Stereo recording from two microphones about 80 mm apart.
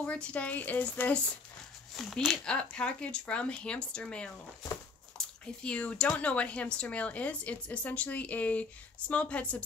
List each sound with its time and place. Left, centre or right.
0.0 s speech: centre
2.0 s speech: centre
5.6 s speech: centre